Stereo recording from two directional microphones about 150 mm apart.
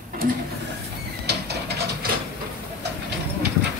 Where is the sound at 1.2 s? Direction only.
90° right.